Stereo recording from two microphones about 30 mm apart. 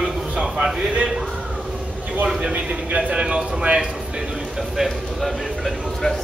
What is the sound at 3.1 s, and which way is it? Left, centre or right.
Speech, right.